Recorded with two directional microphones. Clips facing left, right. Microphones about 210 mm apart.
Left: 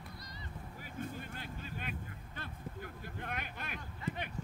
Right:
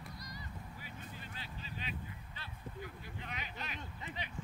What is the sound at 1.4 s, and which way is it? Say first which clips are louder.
Vehicle: left 3 dB; 50° left (ahead or behind).